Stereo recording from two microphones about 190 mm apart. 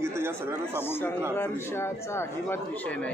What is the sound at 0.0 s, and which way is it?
Speech, 10° right (ahead or behind).